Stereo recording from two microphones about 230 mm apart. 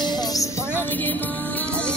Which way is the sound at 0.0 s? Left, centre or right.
Centre.